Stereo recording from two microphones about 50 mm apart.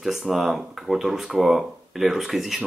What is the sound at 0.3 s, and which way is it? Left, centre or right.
Speech, centre.